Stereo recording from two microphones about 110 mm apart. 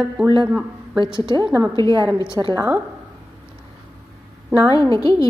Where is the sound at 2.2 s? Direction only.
30° left (ahead or behind).